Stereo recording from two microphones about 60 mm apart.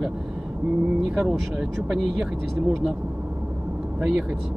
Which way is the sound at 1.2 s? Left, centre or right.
Centre.